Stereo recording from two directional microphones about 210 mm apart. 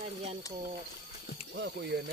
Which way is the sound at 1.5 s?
55° right (ahead or behind).